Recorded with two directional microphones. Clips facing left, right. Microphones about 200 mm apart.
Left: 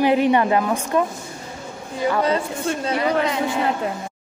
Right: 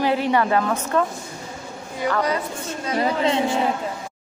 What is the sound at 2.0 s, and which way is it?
Speech, 25° left (ahead or behind).